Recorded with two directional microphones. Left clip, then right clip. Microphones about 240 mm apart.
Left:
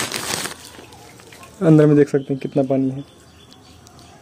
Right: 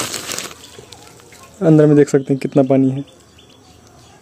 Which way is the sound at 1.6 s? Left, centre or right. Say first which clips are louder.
Right 2 dB; centre.